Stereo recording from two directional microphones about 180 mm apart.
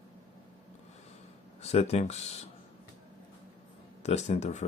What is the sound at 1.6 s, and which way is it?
Speech, 35° left (ahead or behind).